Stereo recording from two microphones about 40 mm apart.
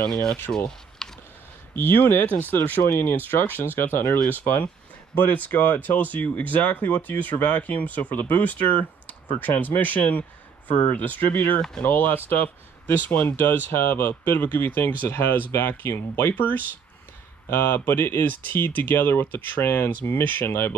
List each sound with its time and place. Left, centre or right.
0.1 s speech: left
0.7 s computer keyboard: centre
1.8 s speech: left
2.9 s speech: left
4.3 s speech: left
13.8 s speech: left
16.3 s speech: left
17.5 s speech: left
19.0 s speech: left
19.6 s speech: left
20.4 s speech: left